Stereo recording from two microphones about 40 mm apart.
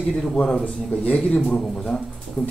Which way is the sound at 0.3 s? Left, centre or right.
Left.